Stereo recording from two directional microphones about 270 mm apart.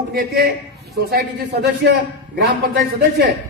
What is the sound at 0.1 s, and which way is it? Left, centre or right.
A man's voice, right.